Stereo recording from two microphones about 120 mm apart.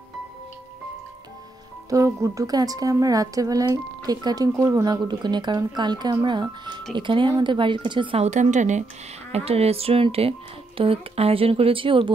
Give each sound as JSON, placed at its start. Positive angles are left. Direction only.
{"t": 1.9, "sound": "speech", "side_deg": -25}
{"t": 8.2, "sound": "a woman's voice", "side_deg": -85}
{"t": 9.3, "sound": "speech", "side_deg": -55}